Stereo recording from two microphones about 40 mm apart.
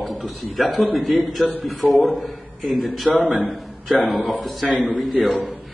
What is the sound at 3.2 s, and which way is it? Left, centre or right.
Speech, right.